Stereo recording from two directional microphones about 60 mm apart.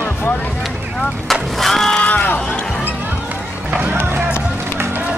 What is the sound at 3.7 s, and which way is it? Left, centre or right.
Run, right.